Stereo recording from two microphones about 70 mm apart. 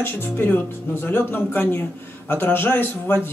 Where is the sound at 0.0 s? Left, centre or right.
Left.